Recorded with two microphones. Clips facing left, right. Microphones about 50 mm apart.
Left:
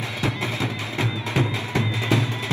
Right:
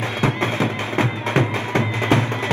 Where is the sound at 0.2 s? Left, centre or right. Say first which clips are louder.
Right 6 dB; right.